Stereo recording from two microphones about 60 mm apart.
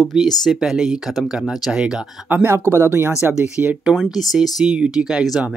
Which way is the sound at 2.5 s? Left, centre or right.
Right.